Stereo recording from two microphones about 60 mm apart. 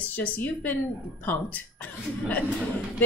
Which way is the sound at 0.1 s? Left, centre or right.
Left.